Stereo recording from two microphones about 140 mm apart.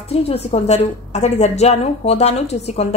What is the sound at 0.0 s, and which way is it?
A woman's voice, 45° left (ahead or behind).